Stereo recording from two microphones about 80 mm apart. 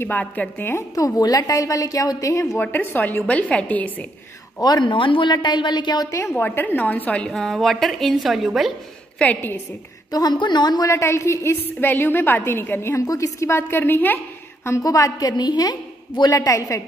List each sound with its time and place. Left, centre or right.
0.0 s a woman's voice: centre
0.9 s a woman's voice: left
2.6 s a woman's voice: left
4.6 s a woman's voice: left
4.8 s a woman's voice: left
6.0 s a woman's voice: left
6.3 s a woman's voice: left
7.2 s a woman's voice: centre
9.2 s a woman's voice: left
10.1 s a woman's voice: left
10.9 s a woman's voice: left
13.0 s a woman's voice: left
14.8 s a woman's voice: left